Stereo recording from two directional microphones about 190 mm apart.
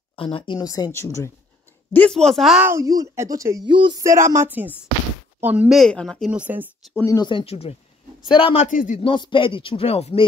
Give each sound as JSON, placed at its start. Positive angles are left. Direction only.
{"t": 0.1, "sound": "a woman's voice", "side_deg": 30}
{"t": 7.0, "sound": "speech", "side_deg": 20}
{"t": 8.6, "sound": "speech", "side_deg": 45}
{"t": 9.0, "sound": "speech", "side_deg": 25}